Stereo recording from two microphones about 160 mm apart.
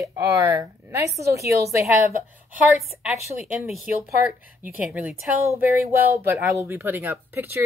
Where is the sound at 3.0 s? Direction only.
5° right (ahead or behind).